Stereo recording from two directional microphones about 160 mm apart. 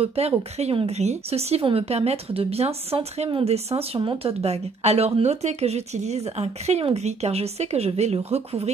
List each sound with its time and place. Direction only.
0.0 s speech: 40° right (ahead or behind)